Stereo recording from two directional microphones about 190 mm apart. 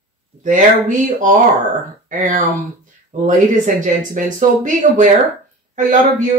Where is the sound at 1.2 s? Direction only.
40° right (ahead or behind).